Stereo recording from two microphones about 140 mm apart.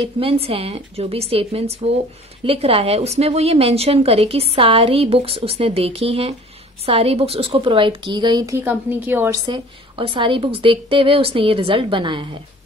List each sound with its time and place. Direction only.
0.2 s a woman's voice: 40° right (ahead or behind)
8.5 s a woman's voice: 15° right (ahead or behind)
9.5 s a woman's voice: 35° right (ahead or behind)